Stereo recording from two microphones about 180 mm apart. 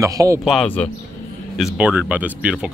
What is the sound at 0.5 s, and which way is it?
Speech, 5° left (ahead or behind).